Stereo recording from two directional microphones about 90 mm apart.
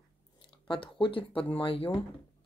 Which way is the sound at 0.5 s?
70° left (ahead or behind).